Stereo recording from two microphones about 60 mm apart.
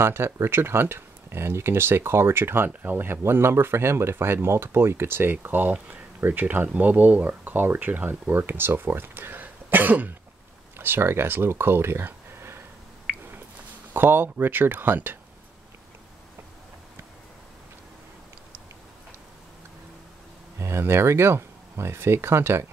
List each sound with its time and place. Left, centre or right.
0.0 s speech: right
13.1 s a sound: centre
13.9 s speech: right
20.5 s speech: right